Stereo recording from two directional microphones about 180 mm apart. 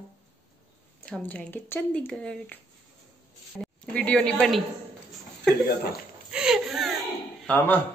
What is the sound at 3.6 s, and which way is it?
Speech, 5° left (ahead or behind).